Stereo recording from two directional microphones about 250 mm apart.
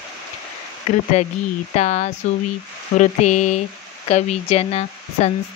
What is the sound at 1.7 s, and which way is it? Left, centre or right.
Speech, left.